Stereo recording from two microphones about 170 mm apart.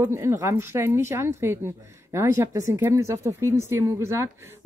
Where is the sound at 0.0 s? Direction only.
15° right (ahead or behind).